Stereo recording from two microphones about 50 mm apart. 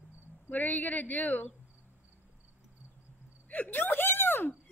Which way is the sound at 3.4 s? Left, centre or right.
Left.